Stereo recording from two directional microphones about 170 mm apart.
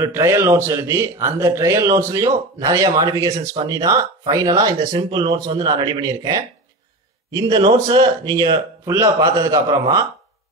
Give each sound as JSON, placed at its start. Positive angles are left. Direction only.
{"t": 0.0, "sound": "a man's voice", "side_deg": -15}